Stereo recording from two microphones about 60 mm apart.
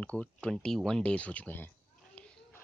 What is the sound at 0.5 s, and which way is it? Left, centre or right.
Speech, centre.